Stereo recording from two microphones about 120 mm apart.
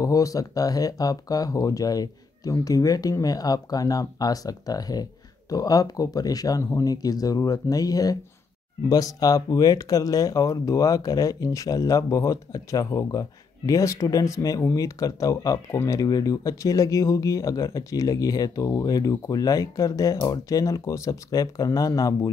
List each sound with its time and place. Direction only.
0.0 s speech: 30° left (ahead or behind)